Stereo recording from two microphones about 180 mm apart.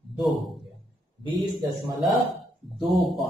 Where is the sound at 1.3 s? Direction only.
25° right (ahead or behind).